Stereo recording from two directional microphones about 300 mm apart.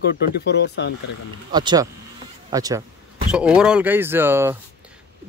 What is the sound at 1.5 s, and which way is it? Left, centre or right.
Speech, centre.